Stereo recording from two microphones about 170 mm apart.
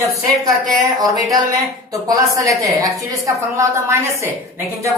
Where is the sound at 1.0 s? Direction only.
20° right (ahead or behind).